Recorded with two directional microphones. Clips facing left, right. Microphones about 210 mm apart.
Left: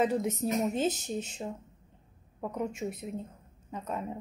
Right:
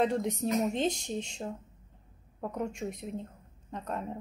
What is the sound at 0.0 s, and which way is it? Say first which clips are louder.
Speech: even; 5° left (ahead or behind).